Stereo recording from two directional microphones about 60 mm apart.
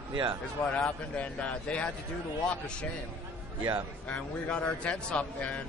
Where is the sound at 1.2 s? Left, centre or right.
Left.